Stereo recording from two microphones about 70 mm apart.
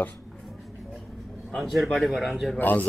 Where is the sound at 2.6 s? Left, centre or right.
Left.